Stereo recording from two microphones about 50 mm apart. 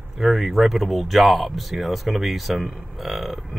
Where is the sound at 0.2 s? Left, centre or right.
Centre.